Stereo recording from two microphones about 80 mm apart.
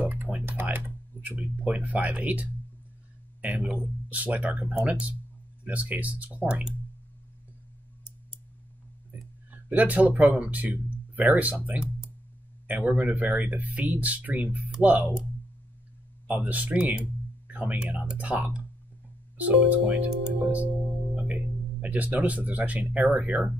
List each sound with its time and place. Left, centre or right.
0.0 s typing: right
1.4 s speech: centre
9.1 s a sound: centre
10.4 s speech: centre
16.3 s speech: centre
21.8 s speech: centre